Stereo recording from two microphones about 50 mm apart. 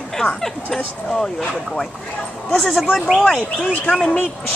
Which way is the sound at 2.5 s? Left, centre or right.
Centre.